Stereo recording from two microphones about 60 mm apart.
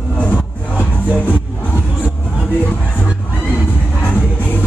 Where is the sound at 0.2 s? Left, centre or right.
Left.